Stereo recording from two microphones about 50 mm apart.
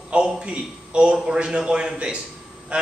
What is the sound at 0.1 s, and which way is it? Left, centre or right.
A man's voice, right.